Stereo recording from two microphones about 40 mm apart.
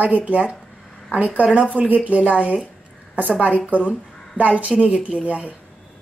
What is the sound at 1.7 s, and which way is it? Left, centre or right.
Speech, right.